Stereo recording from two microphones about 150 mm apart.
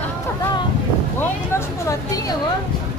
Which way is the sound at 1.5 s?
20° left (ahead or behind).